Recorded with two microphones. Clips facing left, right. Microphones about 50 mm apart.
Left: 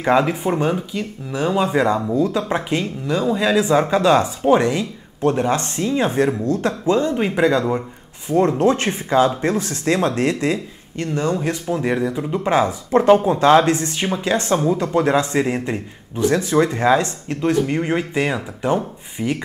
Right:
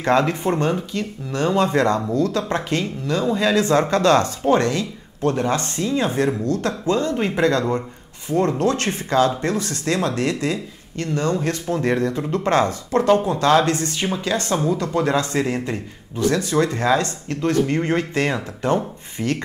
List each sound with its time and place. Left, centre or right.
0.0 s speech: centre
8.3 s a man's voice: left